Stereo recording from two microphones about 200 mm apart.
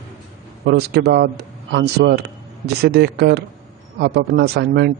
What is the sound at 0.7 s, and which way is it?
Speech, 55° right (ahead or behind).